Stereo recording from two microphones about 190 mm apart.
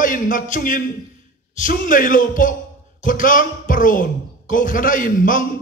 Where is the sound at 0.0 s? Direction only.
45° left (ahead or behind).